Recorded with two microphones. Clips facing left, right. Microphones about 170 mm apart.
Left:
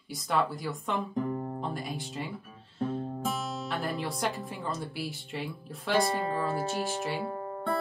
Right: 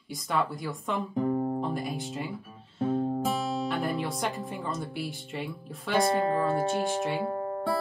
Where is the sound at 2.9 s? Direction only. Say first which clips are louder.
Right 7 dB; 40° right (ahead or behind).